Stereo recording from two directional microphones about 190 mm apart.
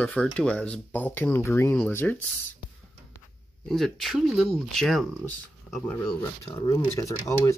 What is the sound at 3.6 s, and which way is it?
Speech, centre (ahead or behind).